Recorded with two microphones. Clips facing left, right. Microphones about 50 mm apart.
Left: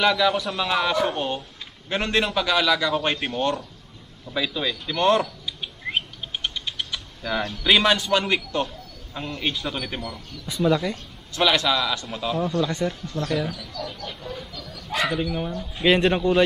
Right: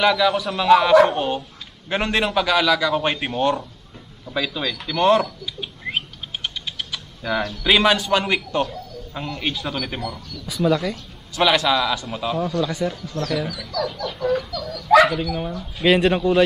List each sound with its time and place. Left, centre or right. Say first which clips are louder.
0.0 s a man's voice: right 2 dB; centre
1.9 s speech: right 2 dB; centre
2.3 s a man's voice: right 3 dB; centre
4.9 s a sound: right 3 dB; centre
7.6 s a man's voice: right 2 dB; centre
11.3 s speech: right 3 dB; centre
13.1 s a man's voice: right 1 dB; centre
13.5 s speech: right 7 dB; right
15.0 s a man's voice: right 2 dB; centre